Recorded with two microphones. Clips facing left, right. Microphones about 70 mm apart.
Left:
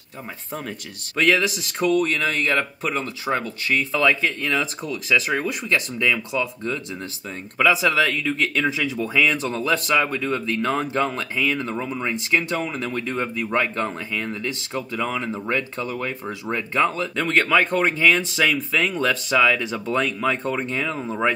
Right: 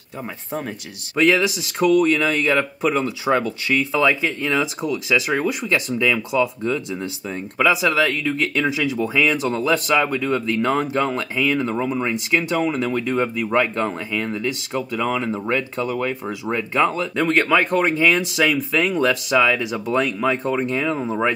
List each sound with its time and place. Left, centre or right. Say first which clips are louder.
0.5 s speech: right 3 dB; centre; by 4.0 s right
4.0 s speech: right 1 dB; centre